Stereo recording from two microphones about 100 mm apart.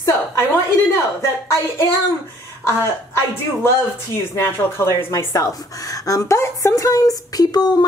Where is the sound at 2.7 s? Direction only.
25° left (ahead or behind).